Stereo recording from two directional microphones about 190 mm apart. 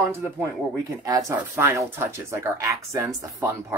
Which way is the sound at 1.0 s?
15° right (ahead or behind).